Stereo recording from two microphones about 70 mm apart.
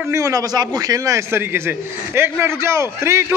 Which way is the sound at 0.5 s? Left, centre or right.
Right.